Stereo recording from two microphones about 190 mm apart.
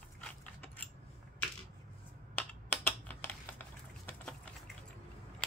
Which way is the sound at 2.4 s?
10° left (ahead or behind).